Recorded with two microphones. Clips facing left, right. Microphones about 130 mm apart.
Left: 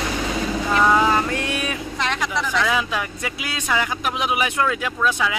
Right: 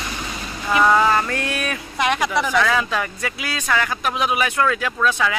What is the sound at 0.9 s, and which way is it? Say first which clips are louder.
Speech: right 1 dB; 10° left (ahead or behind).